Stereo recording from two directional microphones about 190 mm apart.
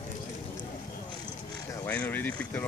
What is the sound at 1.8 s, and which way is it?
Speech, 10° left (ahead or behind).